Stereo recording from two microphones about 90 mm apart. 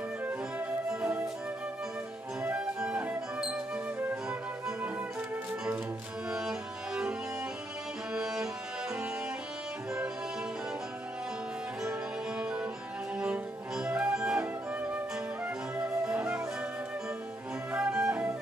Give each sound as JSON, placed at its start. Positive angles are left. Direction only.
{"t": 0.3, "sound": "music", "side_deg": -15}
{"t": 2.4, "sound": "music", "side_deg": -10}
{"t": 8.1, "sound": "music", "side_deg": -5}
{"t": 12.4, "sound": "music", "side_deg": -10}
{"t": 13.2, "sound": "flute", "side_deg": -10}
{"t": 15.8, "sound": "music", "side_deg": -15}
{"t": 17.7, "sound": "music", "side_deg": -5}